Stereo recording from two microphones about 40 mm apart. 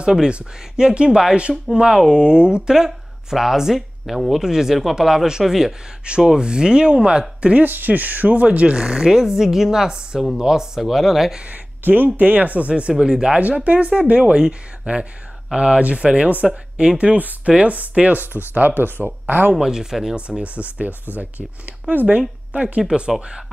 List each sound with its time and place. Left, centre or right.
0.0 s speech: centre
4.5 s speech: centre
6.0 s speech: right
7.5 s speech: right
8.7 s speech: centre
10.9 s speech: centre
11.8 s speech: right
13.0 s speech: centre
13.3 s speech: right
19.5 s speech: centre
20.2 s speech: right
21.6 s speech: right
22.5 s speech: right
22.8 s speech: right